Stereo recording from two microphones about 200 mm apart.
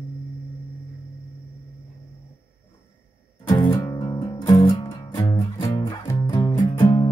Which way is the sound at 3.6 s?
20° left (ahead or behind).